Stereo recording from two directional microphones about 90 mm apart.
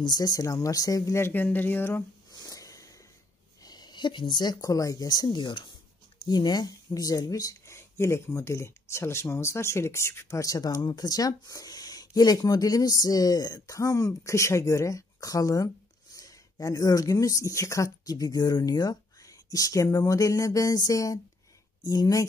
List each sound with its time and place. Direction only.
0.0 s speech: 45° left (ahead or behind)
1.2 s speech: 20° left (ahead or behind)
2.3 s a sound: 40° left (ahead or behind)
3.6 s speech: 50° left (ahead or behind)